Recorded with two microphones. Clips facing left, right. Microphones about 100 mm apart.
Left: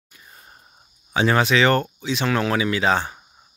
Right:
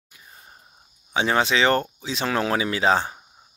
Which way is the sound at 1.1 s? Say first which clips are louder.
Left 3 dB; 20° right (ahead or behind).